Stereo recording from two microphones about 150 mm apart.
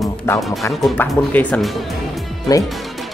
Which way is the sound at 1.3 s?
10° left (ahead or behind).